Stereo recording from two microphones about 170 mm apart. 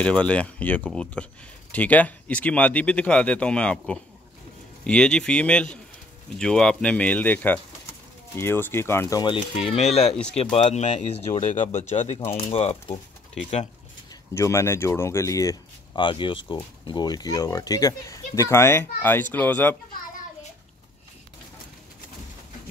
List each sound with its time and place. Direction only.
0.0 s speech: 5° left (ahead or behind)
9.2 s speech: 30° left (ahead or behind)
14.3 s speech: 15° left (ahead or behind)
16.0 s speech: 30° left (ahead or behind); by 19.8 s 10° left (ahead or behind)